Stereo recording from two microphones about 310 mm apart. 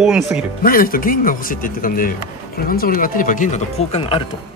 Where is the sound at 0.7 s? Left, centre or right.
Left.